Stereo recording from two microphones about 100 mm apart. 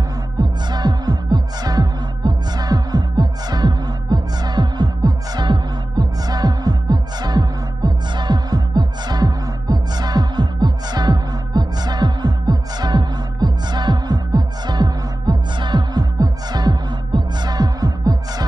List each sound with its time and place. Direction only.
0.4 s music: 45° right (ahead or behind)